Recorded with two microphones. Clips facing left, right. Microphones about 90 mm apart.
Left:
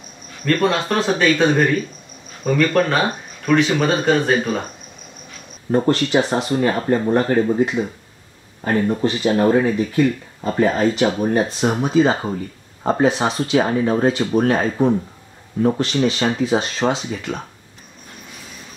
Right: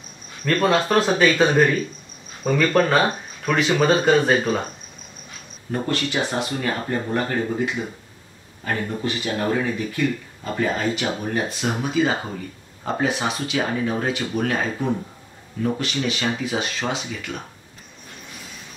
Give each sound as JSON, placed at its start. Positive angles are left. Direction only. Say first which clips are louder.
{"t": 0.5, "sound": "speech", "louder": "left 1 dB", "side_deg": 0}
{"t": 5.7, "sound": "speech", "louder": "left 8 dB", "side_deg": 35}